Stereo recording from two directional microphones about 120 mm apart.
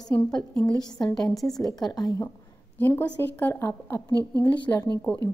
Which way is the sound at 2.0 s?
35° left (ahead or behind).